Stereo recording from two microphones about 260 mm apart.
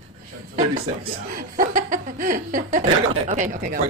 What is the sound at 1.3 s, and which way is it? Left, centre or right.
Speech, right.